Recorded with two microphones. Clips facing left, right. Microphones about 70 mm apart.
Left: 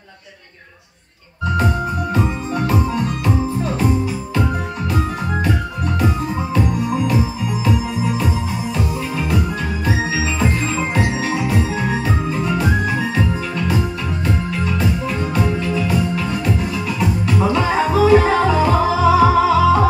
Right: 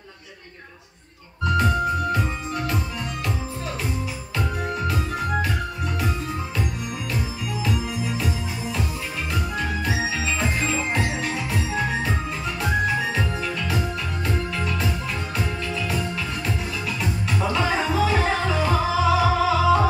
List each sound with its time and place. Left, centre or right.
2.1 s organ: centre
5.9 s music: centre
11.0 s music: centre
17.6 s music: centre